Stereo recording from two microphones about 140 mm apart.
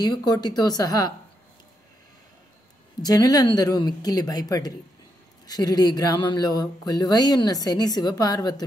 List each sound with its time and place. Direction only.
0.0 s speech: 30° left (ahead or behind)
3.0 s speech: 30° left (ahead or behind)